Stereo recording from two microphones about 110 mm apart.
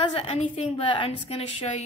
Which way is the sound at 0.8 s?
50° left (ahead or behind).